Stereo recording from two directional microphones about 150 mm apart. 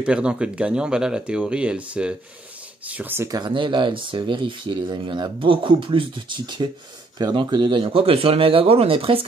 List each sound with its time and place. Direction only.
0.0 s speech: 5° right (ahead or behind)
3.3 s speech: 30° right (ahead or behind)